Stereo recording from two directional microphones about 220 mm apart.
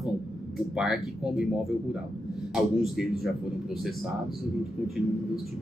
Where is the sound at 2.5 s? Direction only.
Centre (ahead or behind).